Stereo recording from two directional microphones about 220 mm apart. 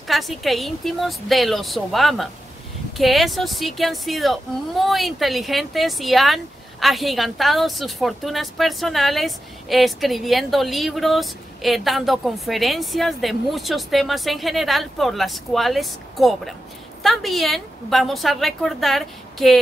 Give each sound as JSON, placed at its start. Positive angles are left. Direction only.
{"t": 0.1, "sound": "a woman's voice", "side_deg": 0}